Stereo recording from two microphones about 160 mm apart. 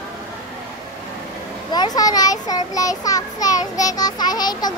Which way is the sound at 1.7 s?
25° left (ahead or behind).